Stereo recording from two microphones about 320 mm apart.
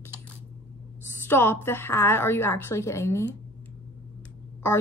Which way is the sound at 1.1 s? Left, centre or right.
Centre.